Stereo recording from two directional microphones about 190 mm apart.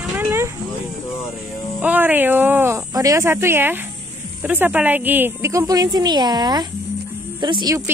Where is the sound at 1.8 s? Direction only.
10° right (ahead or behind).